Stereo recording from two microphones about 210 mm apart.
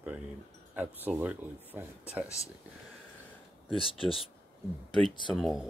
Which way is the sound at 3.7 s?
25° left (ahead or behind).